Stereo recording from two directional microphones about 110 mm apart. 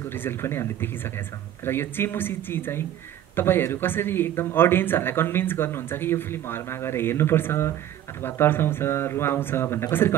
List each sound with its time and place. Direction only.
0.1 s speech: 20° left (ahead or behind)